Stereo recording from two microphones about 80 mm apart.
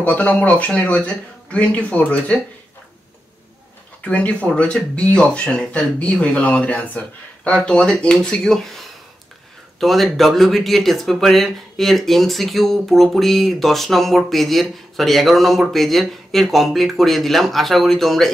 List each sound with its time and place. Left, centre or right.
0.0 s speech: centre
4.0 s speech: centre